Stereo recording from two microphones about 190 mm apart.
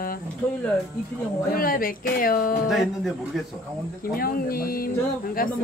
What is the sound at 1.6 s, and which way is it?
A man's voice, 50° left (ahead or behind).